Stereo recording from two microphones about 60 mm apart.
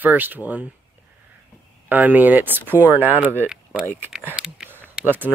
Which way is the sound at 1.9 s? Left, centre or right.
Right.